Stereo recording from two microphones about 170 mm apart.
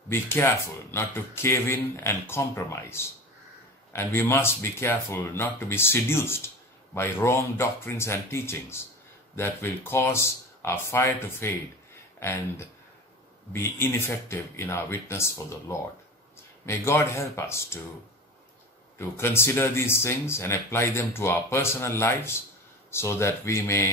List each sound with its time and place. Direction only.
0.1 s speech: 15° left (ahead or behind)
18.9 s speech: 15° left (ahead or behind)